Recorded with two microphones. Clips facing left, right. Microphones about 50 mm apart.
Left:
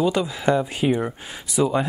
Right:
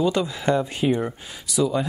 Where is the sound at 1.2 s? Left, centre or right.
Left.